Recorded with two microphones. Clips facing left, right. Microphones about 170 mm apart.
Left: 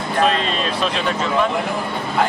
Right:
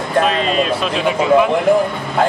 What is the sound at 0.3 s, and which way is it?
Speech, 5° right (ahead or behind).